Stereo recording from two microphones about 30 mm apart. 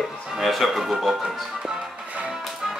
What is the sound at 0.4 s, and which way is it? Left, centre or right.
Speech, centre.